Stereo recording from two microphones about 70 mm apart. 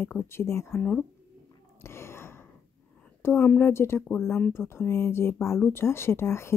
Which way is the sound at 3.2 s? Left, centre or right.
Left.